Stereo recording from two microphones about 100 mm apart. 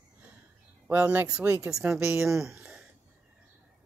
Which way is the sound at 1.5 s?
30° right (ahead or behind).